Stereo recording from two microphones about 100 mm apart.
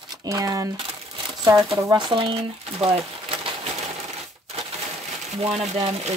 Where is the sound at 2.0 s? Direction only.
55° right (ahead or behind).